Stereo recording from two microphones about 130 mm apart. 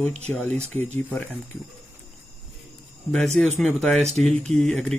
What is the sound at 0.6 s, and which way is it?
Speech, 60° right (ahead or behind).